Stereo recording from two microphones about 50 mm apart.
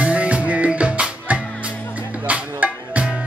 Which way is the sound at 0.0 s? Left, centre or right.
Right.